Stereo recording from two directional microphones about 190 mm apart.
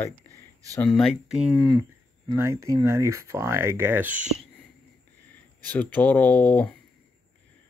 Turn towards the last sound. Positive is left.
turn(degrees=10)  # may be behind; listen again after turning